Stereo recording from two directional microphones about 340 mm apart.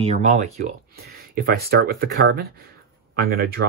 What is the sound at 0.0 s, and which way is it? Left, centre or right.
Speech, centre.